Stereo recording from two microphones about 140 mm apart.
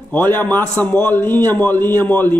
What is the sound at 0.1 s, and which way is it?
A man's voice, 10° left (ahead or behind).